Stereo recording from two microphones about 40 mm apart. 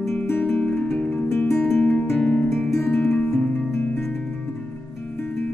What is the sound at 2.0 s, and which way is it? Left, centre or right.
Music, left.